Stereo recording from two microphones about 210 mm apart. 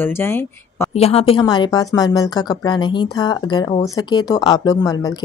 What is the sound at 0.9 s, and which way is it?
A woman's voice, 30° left (ahead or behind).